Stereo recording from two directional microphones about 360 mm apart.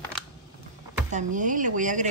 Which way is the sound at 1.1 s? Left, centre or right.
Right.